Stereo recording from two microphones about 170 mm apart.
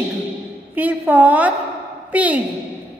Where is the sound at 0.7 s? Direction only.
10° right (ahead or behind).